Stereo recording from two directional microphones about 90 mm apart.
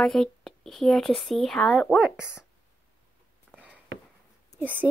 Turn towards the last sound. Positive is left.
turn(degrees=-20)  # may be behind; listen again after turning